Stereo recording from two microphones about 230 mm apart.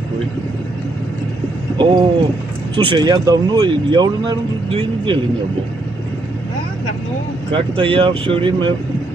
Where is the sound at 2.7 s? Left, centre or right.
Centre.